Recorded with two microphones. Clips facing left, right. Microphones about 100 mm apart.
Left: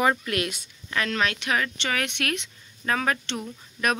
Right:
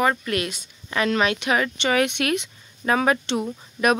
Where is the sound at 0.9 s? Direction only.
10° right (ahead or behind).